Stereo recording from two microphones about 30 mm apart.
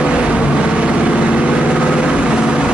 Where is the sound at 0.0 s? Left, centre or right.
Right.